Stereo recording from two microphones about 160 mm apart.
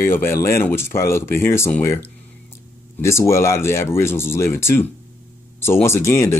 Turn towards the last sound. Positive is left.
turn(degrees=15)  # may be behind; listen again after turning